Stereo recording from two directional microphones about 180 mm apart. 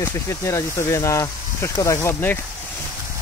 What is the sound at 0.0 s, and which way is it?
Speech, 15° left (ahead or behind).